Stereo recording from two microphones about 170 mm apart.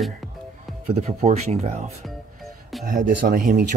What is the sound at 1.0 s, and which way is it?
Speech, 40° right (ahead or behind).